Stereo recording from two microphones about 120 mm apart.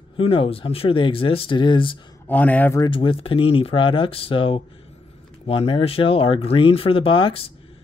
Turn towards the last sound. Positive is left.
turn(degrees=50)  # may be behind; listen again after turning